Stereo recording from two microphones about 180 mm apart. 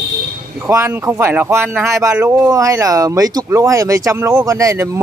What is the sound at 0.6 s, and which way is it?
Speech, 15° right (ahead or behind).